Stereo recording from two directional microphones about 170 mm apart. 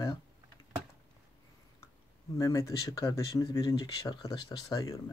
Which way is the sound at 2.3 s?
20° left (ahead or behind).